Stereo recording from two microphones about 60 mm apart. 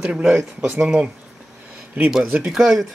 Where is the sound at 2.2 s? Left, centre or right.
Centre.